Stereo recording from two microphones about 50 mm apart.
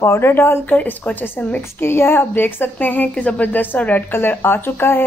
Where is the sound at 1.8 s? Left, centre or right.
Left.